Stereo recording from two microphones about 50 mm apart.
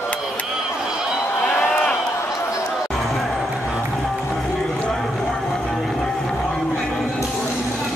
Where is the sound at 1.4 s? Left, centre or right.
Left.